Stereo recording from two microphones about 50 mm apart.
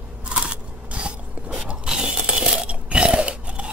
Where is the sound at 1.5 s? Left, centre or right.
Centre.